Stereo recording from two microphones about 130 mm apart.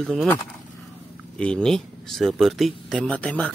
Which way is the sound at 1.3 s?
5° left (ahead or behind).